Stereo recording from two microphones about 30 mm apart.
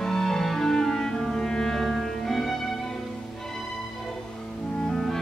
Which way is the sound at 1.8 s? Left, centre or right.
Centre.